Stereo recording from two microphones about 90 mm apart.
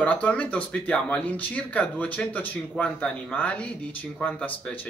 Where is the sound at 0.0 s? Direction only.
15° left (ahead or behind).